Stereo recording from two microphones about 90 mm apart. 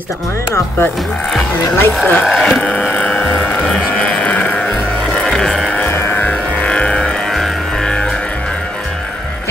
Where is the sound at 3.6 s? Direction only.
10° left (ahead or behind).